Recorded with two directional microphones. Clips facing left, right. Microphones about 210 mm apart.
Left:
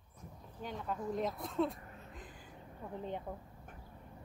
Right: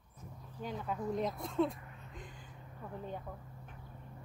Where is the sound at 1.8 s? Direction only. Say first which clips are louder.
Left 1 dB; 35° left (ahead or behind).